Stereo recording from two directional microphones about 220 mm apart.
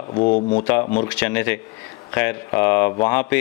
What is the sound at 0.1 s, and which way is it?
Speech, 30° left (ahead or behind).